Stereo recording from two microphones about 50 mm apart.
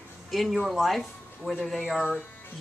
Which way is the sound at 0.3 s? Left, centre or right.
Centre.